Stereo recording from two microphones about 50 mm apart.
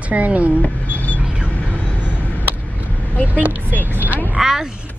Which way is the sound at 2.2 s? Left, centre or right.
Left.